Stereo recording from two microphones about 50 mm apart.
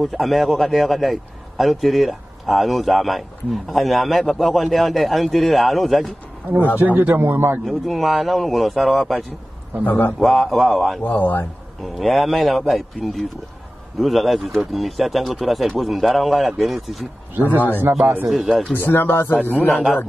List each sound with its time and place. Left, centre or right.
0.0 s a man's voice: centre
6.8 s a man's voice: right
7.6 s a man's voice: centre
9.8 s speech: left
10.1 s a man's voice: centre
11.0 s speech: left
11.8 s a man's voice: centre
17.6 s speech: left
18.2 s a man's voice: centre
18.9 s speech: left
19.7 s a man's voice: centre